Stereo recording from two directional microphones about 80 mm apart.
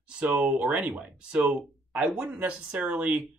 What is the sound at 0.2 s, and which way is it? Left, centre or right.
Speech, centre.